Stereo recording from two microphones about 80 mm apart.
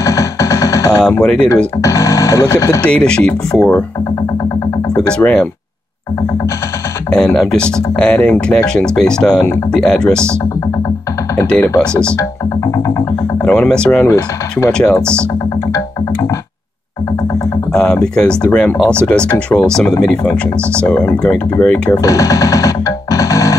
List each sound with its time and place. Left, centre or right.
0.0 s music: left
0.9 s speech: centre
1.8 s speech: left
2.8 s speech: centre
4.9 s speech: centre
7.1 s speech: centre
11.8 s speech: centre
12.7 s speech: left
13.4 s speech: centre
14.0 s speech: left
14.7 s speech: centre
17.7 s speech: centre
22.0 s music: left